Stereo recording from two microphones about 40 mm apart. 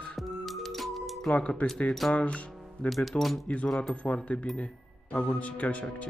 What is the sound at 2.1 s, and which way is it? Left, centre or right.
Music, left.